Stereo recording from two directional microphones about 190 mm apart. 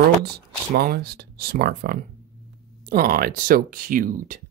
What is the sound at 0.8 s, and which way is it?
Speech, 55° right (ahead or behind).